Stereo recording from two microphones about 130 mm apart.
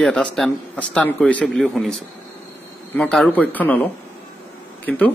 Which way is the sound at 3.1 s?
5° left (ahead or behind).